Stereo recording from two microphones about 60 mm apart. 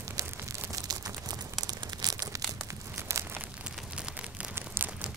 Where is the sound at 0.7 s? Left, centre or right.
Right.